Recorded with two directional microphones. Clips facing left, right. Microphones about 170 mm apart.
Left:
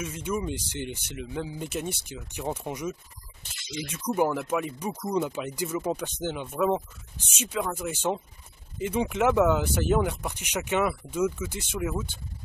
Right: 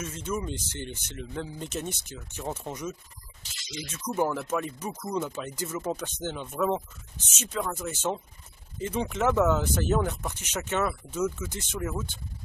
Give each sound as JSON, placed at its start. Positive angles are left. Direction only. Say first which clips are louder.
{"t": 0.0, "sound": "speech", "louder": "left 2 dB", "side_deg": 10}
{"t": 3.4, "sound": "speech", "louder": "left 4 dB", "side_deg": 55}
{"t": 3.9, "sound": "speech", "louder": "left 2 dB", "side_deg": 10}